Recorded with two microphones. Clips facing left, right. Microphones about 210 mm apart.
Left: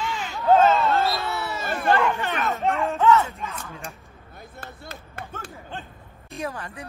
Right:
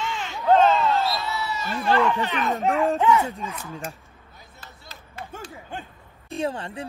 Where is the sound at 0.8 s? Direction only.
50° left (ahead or behind).